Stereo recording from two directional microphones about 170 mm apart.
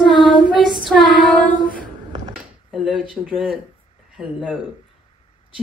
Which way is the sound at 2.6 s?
5° right (ahead or behind).